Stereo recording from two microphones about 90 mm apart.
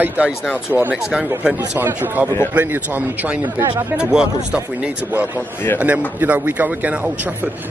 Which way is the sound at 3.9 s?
10° right (ahead or behind).